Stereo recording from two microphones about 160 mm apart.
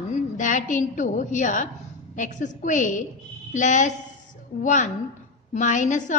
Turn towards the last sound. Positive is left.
turn(degrees=50)  # may be behind; listen again after turning